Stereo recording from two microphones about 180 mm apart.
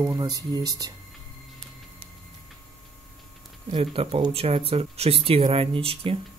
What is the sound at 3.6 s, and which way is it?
Speech, 30° right (ahead or behind).